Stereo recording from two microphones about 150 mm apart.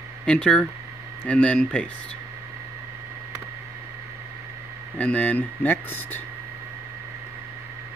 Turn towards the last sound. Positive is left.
turn(degrees=15)  # may be behind; listen again after turning